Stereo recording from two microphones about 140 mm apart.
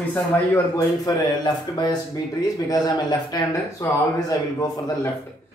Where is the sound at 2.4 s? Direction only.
30° left (ahead or behind).